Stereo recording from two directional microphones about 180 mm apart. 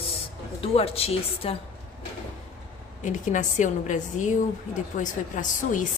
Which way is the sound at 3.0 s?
45° left (ahead or behind).